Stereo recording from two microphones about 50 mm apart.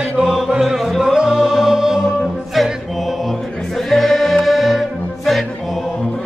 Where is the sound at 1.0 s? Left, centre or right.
Centre.